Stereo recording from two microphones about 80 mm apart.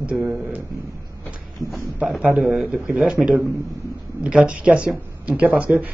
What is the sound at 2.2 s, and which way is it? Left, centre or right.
A man's voice, centre.